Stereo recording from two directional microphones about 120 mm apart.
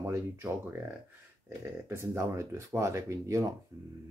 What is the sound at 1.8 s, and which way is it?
Speech, 25° right (ahead or behind).